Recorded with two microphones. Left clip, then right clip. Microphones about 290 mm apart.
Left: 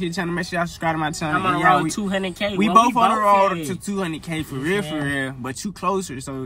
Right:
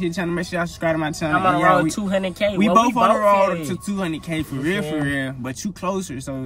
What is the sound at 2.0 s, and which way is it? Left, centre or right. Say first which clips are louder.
Speech: right 3 dB; centre.